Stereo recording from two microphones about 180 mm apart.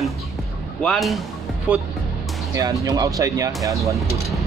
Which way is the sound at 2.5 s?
20° right (ahead or behind).